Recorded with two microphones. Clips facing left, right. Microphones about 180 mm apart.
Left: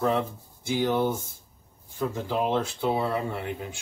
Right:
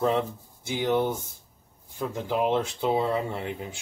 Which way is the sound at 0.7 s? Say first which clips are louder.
Even; 20° right (ahead or behind).